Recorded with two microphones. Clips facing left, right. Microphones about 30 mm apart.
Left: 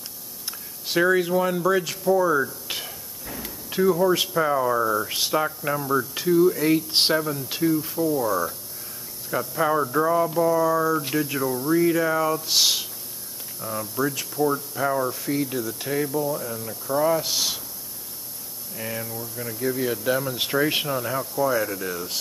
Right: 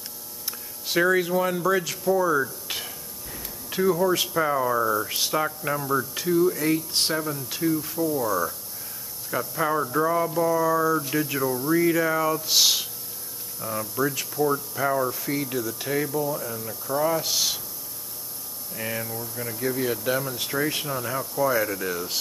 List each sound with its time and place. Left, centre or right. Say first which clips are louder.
0.5 s speech: even; centre
6.9 s speech: left 5 dB; left
7.2 s speech: left 3 dB; centre
18.7 s speech: right 1 dB; centre
20.6 s speech: left 3 dB; centre
20.9 s speech: left 2 dB; centre